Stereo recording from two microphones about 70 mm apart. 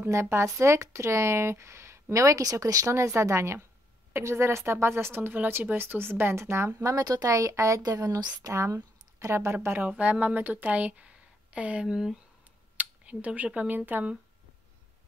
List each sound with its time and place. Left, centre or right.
0.0 s speech: right
8.2 s speech: right
9.8 s speech: right
11.9 s speech: centre
12.7 s speech: right